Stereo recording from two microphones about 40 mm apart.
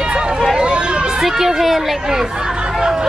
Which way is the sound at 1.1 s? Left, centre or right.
Centre.